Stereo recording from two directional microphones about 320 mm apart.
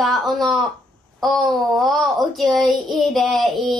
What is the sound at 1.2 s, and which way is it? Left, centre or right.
Speech, centre.